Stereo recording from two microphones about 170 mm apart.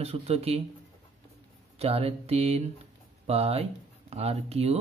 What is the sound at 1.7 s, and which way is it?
Speech, 35° right (ahead or behind).